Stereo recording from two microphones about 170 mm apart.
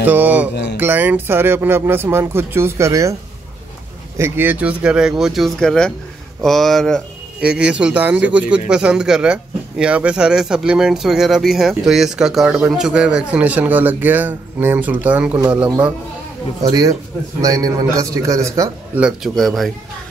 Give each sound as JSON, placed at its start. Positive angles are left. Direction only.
{"t": 0.0, "sound": "speech", "side_deg": -10}
{"t": 4.2, "sound": "speech", "side_deg": -10}
{"t": 16.6, "sound": "a man's voice", "side_deg": -20}
{"t": 18.9, "sound": "speech", "side_deg": -5}